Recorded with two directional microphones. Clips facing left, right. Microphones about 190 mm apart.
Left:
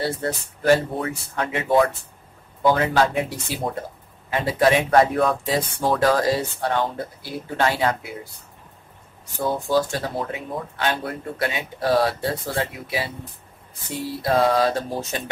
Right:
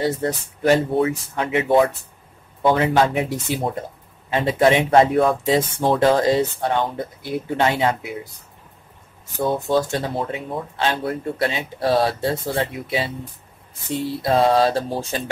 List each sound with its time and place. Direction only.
0.0 s speech: 20° right (ahead or behind)
9.5 s speech: 25° right (ahead or behind)